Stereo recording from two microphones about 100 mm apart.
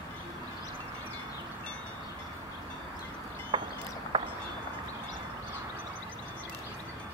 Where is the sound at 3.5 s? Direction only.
55° right (ahead or behind).